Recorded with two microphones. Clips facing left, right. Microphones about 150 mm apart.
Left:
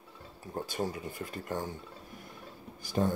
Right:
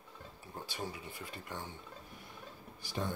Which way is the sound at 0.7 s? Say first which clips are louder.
Left 7 dB; 50° left (ahead or behind).